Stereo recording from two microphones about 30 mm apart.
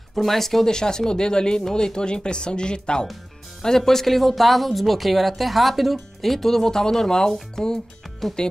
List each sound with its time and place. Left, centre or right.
0.1 s speech: centre
0.7 s speech: left
3.6 s speech: centre